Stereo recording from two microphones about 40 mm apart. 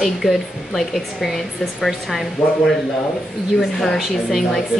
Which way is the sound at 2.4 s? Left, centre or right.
Right.